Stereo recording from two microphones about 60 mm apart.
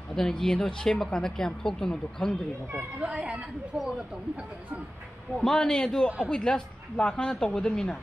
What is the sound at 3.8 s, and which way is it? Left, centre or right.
Speech, centre.